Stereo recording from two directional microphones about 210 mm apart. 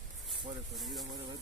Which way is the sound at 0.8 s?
Centre (ahead or behind).